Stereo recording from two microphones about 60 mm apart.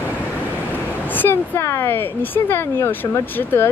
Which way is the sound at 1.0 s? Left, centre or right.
Left.